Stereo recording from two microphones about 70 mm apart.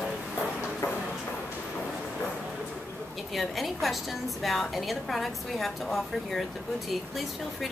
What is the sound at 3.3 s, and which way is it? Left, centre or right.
A woman's voice, centre.